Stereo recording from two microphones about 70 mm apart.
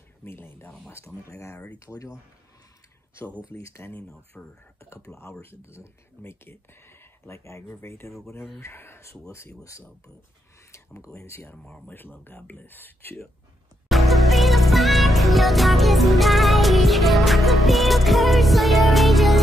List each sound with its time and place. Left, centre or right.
0.2 s speech: left
3.6 s speech: left
4.3 s speech: left
4.7 s speech: left
11.1 s speech: left
11.5 s speech: centre
11.9 s speech: left
13.8 s music: centre